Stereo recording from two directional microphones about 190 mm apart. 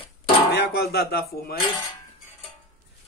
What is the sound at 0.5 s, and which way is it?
Speech, 60° left (ahead or behind).